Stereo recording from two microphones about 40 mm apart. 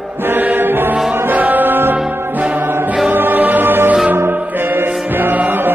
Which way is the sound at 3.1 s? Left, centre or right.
Right.